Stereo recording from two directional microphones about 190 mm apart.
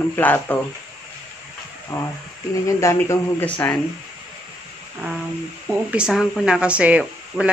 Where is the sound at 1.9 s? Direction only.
20° left (ahead or behind).